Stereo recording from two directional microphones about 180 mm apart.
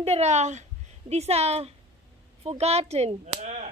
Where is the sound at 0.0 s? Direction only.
35° right (ahead or behind).